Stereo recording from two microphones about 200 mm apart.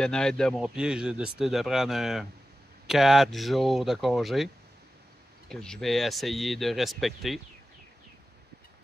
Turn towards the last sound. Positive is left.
turn(degrees=0)  # may be behind; listen again after turning